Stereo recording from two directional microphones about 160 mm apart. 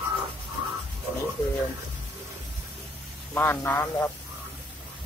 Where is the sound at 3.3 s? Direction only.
10° left (ahead or behind).